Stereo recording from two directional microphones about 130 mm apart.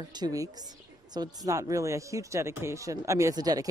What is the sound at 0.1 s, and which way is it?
Speech, 30° right (ahead or behind).